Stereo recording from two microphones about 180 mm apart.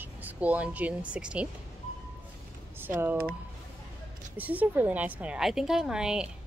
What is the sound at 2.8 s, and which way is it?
Speech, 10° right (ahead or behind).